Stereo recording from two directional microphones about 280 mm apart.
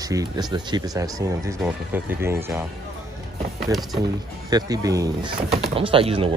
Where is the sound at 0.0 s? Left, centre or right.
Centre.